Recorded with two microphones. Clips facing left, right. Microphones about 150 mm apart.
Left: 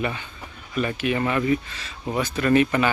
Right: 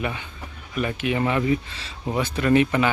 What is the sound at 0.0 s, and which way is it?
Speech, 15° right (ahead or behind).